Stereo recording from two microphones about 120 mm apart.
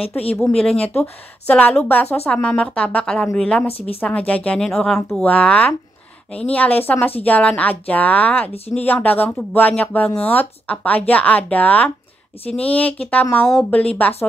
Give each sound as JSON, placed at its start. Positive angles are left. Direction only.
{"t": 0.4, "sound": "speech", "side_deg": 5}
{"t": 3.6, "sound": "speech", "side_deg": 55}
{"t": 4.0, "sound": "speech", "side_deg": 10}